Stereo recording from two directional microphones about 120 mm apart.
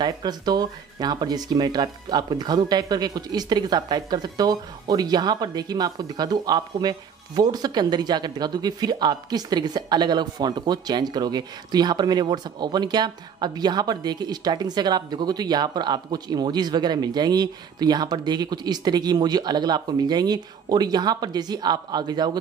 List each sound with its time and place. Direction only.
0.0 s speech: 35° right (ahead or behind)